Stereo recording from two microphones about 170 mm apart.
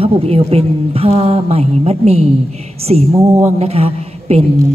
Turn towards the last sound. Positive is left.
turn(degrees=-35)  # may be behind; listen again after turning